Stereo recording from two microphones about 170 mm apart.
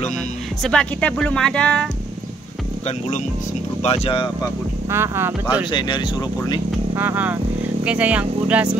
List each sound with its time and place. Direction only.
0.6 s speech: 5° left (ahead or behind)
3.8 s speech: 35° left (ahead or behind)
4.9 s speech: 15° right (ahead or behind)
5.7 s speech: 25° left (ahead or behind)
7.0 s speech: 10° right (ahead or behind)